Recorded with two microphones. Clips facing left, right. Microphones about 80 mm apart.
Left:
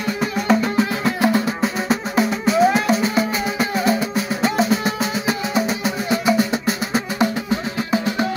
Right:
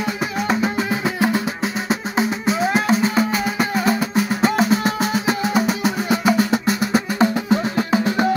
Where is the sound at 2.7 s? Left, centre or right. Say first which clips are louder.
Even; right.